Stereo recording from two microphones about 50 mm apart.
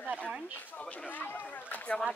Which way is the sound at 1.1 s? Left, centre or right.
Left.